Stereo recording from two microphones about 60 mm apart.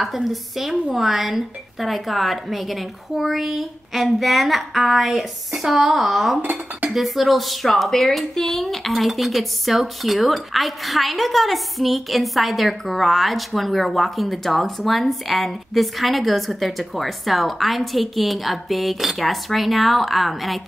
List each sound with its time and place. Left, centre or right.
0.0 s speech: centre